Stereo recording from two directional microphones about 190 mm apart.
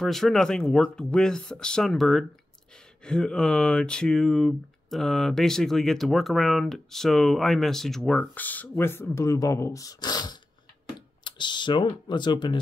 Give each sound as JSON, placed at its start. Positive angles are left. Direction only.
{"t": 0.0, "sound": "speech", "side_deg": 0}